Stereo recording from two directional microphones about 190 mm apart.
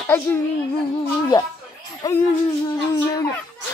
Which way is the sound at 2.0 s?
20° left (ahead or behind).